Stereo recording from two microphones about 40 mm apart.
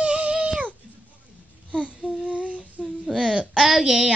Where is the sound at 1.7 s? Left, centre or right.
Right.